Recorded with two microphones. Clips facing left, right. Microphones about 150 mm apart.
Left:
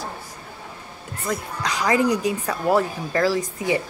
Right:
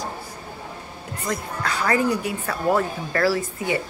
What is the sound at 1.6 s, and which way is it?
Speech, 15° left (ahead or behind).